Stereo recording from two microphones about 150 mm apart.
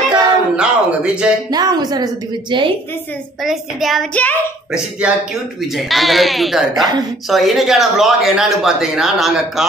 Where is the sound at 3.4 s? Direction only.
Centre (ahead or behind).